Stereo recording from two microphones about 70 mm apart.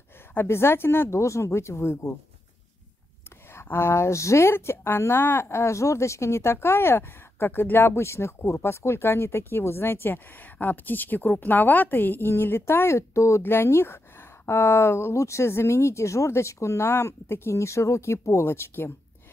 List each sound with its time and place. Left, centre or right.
0.3 s speech: left
3.6 s speech: left
13.4 s speech: left